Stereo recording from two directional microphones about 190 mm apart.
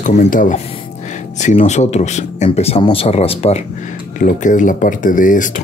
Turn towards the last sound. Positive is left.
turn(degrees=45)  # may be behind; listen again after turning